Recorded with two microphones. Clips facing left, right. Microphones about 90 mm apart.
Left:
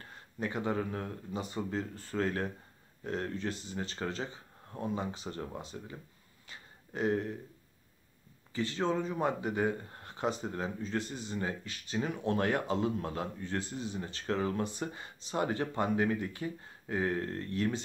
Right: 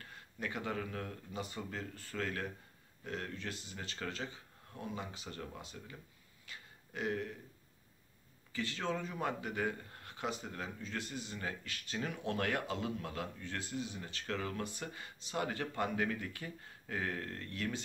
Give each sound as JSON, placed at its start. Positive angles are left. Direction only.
{"t": 0.0, "sound": "speech", "side_deg": 30}
{"t": 6.4, "sound": "a sound", "side_deg": 30}
{"t": 8.5, "sound": "speech", "side_deg": 25}